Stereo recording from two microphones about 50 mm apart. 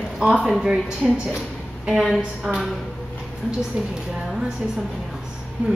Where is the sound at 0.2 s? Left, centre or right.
Centre.